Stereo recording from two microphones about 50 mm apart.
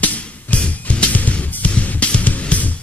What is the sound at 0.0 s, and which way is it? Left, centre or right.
Music, left.